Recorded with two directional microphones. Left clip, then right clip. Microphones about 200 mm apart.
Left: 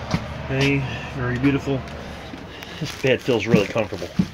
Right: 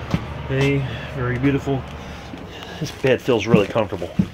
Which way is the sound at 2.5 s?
5° right (ahead or behind).